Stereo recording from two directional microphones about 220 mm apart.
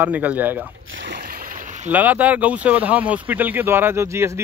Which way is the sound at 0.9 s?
60° right (ahead or behind).